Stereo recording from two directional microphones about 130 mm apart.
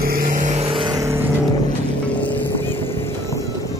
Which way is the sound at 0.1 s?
90° right.